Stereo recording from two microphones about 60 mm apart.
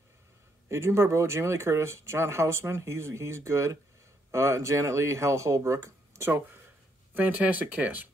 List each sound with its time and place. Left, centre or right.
0.7 s speech: right
7.2 s speech: right